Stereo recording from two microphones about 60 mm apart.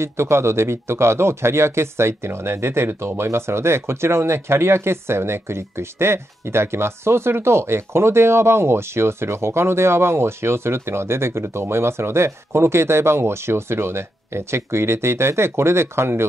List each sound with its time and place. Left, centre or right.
0.0 s speech: right